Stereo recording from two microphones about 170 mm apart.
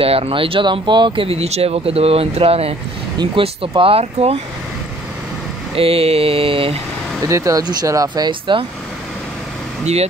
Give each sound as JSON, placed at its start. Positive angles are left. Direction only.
{"t": 0.0, "sound": "speech", "side_deg": -35}
{"t": 5.8, "sound": "speech", "side_deg": -35}
{"t": 7.2, "sound": "speech", "side_deg": -20}